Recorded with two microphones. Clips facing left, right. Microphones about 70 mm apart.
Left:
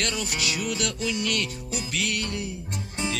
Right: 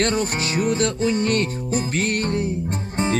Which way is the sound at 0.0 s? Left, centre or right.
Right.